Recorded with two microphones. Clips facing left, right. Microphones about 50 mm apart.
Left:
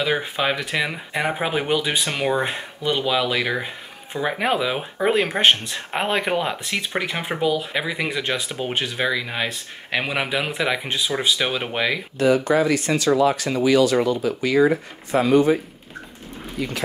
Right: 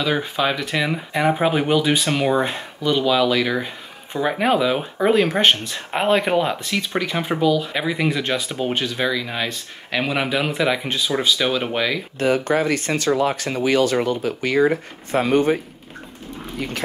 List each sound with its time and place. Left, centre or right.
0.0 s speech: centre
6.7 s speech: centre
12.2 s speech: right